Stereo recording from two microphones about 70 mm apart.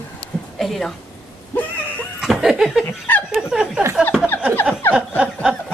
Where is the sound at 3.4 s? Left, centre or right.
Centre.